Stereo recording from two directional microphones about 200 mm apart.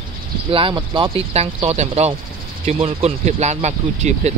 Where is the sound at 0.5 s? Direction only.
25° right (ahead or behind).